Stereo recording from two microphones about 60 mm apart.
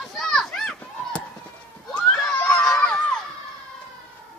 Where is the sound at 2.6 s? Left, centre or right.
Centre.